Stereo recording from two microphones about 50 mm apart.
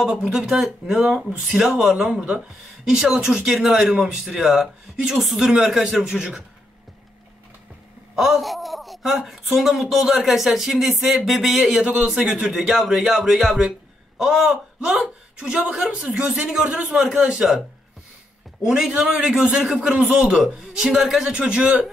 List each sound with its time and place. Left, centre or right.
0.0 s speech: centre
8.2 s speech: centre
11.7 s speech: centre
14.5 s speech: centre
16.8 s speech: centre
18.9 s speech: centre